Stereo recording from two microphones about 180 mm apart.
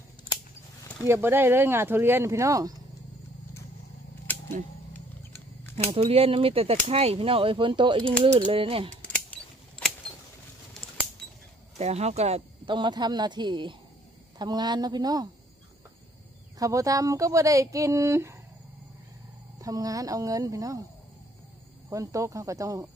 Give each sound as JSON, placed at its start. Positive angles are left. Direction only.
{"t": 1.0, "sound": "speech", "side_deg": -15}
{"t": 5.3, "sound": "wild animals", "side_deg": 15}
{"t": 5.9, "sound": "speech", "side_deg": -35}
{"t": 11.8, "sound": "speech", "side_deg": -35}
{"t": 16.5, "sound": "speech", "side_deg": -20}
{"t": 19.6, "sound": "speech", "side_deg": -20}
{"t": 21.8, "sound": "speech", "side_deg": -20}